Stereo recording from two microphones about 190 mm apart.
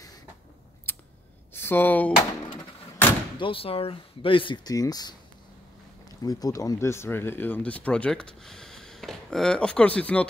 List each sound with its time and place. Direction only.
0.9 s scissors: 10° left (ahead or behind)
1.5 s speech: 10° left (ahead or behind)
3.3 s speech: 30° left (ahead or behind); by 10.2 s 5° left (ahead or behind)